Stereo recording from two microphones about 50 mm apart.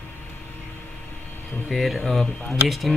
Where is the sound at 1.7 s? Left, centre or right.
Centre.